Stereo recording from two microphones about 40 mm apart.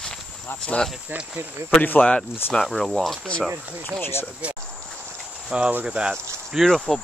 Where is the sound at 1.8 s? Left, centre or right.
Left.